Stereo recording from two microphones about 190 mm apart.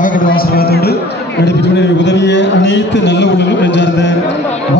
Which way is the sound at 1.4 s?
65° left (ahead or behind).